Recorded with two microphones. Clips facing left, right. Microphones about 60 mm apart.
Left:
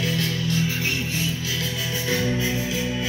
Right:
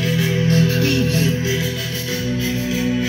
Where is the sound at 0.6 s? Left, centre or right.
Right.